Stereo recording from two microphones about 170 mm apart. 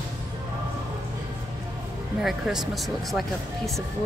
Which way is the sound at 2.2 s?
Centre (ahead or behind).